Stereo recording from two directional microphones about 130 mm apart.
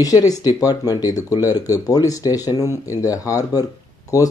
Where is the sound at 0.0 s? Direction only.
30° left (ahead or behind).